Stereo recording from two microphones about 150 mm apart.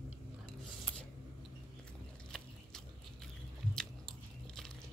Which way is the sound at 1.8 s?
5° left (ahead or behind).